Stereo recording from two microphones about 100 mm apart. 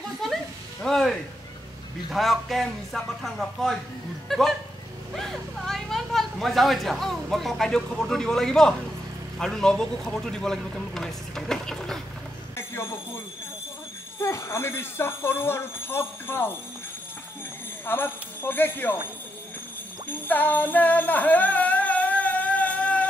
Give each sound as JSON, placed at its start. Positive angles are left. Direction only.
{"t": 0.8, "sound": "speech", "side_deg": 5}
{"t": 12.5, "sound": "a sound", "side_deg": 25}
{"t": 14.2, "sound": "speech", "side_deg": 30}
{"t": 17.8, "sound": "speech", "side_deg": 20}
{"t": 20.1, "sound": "music", "side_deg": 20}